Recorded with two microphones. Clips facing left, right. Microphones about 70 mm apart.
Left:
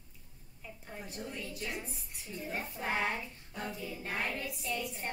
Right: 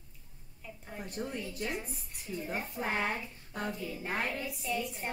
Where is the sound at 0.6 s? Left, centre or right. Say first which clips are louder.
Right 2 dB; centre.